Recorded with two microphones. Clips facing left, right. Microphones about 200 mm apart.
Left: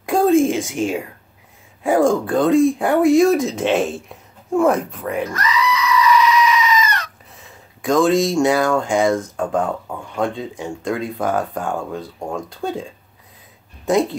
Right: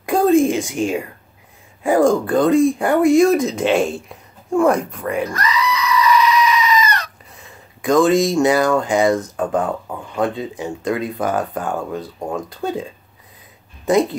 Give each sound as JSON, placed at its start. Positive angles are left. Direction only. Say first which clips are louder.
{"t": 0.0, "sound": "a sound", "louder": "right 1 dB", "side_deg": 0}
{"t": 1.8, "sound": "speech", "louder": "right 1 dB", "side_deg": 0}
{"t": 5.3, "sound": "goat", "louder": "even", "side_deg": -35}
{"t": 7.3, "sound": "speech", "louder": "right 1 dB", "side_deg": 0}